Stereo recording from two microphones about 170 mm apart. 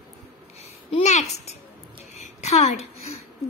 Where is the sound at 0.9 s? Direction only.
40° left (ahead or behind).